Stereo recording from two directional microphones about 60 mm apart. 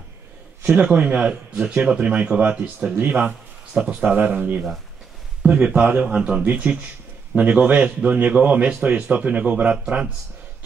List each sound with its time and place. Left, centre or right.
0.7 s a man's voice: right
4.1 s a man's voice: right
5.8 s a man's voice: right
6.4 s a man's voice: right